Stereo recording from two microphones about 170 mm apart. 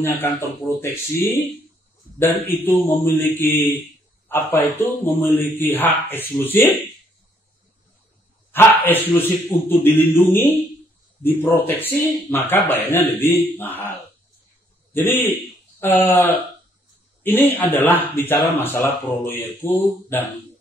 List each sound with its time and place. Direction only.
0.0 s speech: 15° left (ahead or behind)
8.5 s dog: 10° left (ahead or behind)
9.7 s speech: 10° left (ahead or behind)
15.0 s speech: 10° left (ahead or behind)